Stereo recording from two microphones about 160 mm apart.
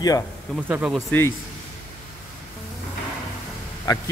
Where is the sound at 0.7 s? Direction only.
10° right (ahead or behind).